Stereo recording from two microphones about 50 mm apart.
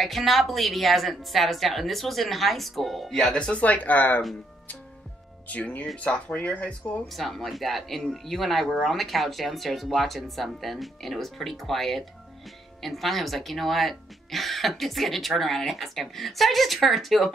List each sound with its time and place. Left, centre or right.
0.0 s speech: centre
3.5 s speech: left
5.5 s speech: left
7.1 s speech: centre